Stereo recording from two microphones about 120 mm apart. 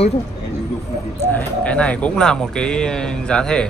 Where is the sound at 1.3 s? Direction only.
10° left (ahead or behind).